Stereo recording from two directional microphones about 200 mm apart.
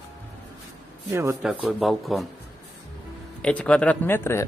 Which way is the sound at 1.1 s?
15° right (ahead or behind).